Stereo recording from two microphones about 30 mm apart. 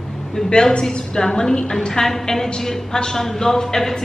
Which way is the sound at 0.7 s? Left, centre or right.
Left.